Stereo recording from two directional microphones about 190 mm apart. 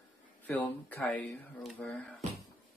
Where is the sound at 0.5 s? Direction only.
10° left (ahead or behind).